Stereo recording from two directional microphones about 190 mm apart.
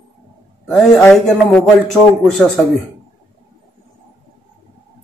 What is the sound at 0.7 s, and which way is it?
A man's voice, 5° left (ahead or behind).